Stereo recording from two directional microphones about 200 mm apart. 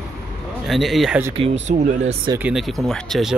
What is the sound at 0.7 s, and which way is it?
Speech, centre (ahead or behind).